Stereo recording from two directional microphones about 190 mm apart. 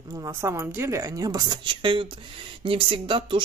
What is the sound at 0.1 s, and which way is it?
A woman's voice, 15° right (ahead or behind).